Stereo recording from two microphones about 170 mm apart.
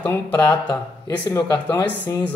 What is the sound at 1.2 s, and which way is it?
Speech, 25° left (ahead or behind).